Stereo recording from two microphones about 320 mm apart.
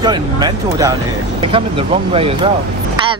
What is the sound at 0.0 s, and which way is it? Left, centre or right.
Speech, centre.